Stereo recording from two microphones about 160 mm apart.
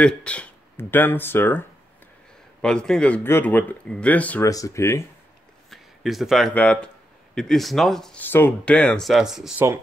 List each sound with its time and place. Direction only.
0.0 s speech: 5° left (ahead or behind)
4.5 s speech: 20° left (ahead or behind)
5.7 s a sound: centre (ahead or behind)
6.5 s speech: 5° left (ahead or behind)